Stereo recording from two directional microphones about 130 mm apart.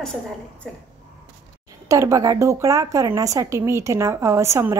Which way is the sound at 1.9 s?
25° right (ahead or behind).